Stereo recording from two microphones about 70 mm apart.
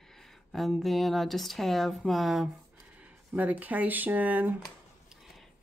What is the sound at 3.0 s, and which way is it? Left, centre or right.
Speech, right.